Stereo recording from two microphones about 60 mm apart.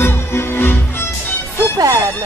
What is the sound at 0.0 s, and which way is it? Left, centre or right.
Music, left.